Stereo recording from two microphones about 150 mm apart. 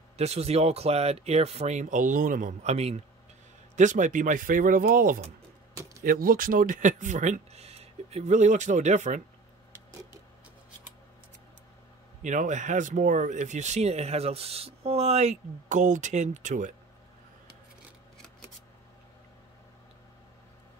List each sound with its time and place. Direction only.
0.2 s speech: 45° right (ahead or behind)
12.2 s speech: 55° right (ahead or behind)